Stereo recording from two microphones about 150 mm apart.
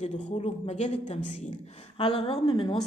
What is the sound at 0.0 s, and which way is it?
A woman's voice, 50° left (ahead or behind).